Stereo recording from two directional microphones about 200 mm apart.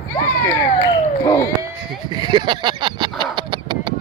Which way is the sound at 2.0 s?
20° right (ahead or behind).